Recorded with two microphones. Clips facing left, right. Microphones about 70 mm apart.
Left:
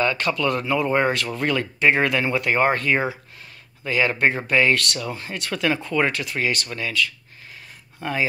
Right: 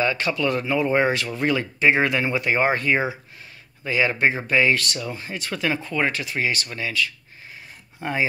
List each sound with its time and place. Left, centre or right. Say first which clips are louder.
0.0 s speech: left 1 dB; centre
8.0 s speech: even; centre